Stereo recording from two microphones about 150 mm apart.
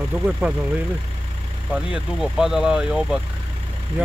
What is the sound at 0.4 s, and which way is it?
Speech, 10° right (ahead or behind).